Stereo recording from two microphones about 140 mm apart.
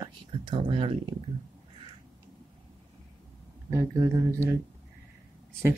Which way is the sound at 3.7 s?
20° right (ahead or behind).